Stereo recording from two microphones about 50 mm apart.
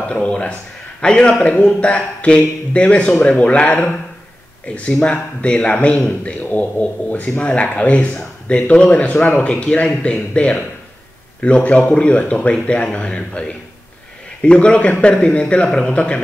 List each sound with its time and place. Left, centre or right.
0.1 s speech: left